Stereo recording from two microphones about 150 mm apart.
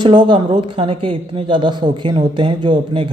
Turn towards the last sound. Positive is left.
turn(degrees=-35)  # may be behind; listen again after turning